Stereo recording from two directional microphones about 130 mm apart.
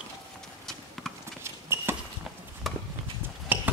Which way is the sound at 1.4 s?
20° right (ahead or behind).